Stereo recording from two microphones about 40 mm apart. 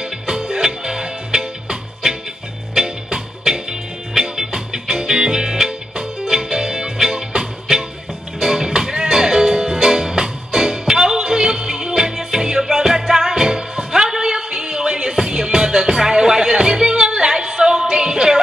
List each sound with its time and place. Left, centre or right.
0.0 s music: centre